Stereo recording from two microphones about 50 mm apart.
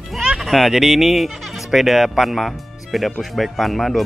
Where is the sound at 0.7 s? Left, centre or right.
Centre.